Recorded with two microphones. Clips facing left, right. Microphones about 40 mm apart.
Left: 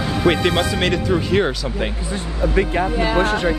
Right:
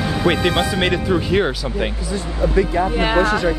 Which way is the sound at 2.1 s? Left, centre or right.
Left.